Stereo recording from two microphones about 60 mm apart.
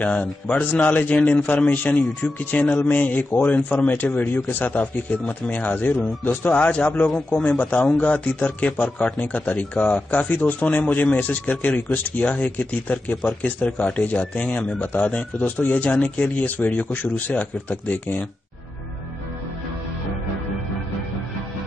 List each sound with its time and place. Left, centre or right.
0.0 s a man's voice: left